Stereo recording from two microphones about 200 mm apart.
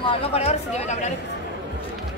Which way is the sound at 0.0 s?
30° left (ahead or behind).